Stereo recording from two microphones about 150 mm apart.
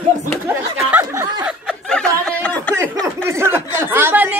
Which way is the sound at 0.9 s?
10° right (ahead or behind).